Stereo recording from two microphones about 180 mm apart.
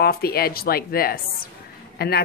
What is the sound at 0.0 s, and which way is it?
Speech, 60° left (ahead or behind).